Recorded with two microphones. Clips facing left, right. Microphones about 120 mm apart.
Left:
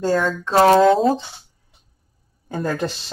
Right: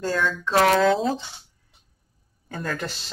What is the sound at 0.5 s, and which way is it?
Speech, 30° left (ahead or behind).